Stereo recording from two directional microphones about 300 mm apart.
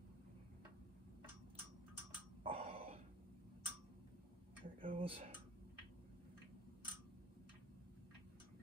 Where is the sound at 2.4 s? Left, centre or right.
Centre.